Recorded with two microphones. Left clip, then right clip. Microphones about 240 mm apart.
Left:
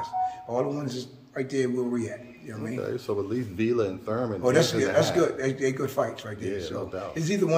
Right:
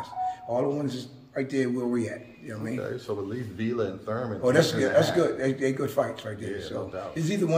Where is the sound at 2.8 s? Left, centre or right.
Left.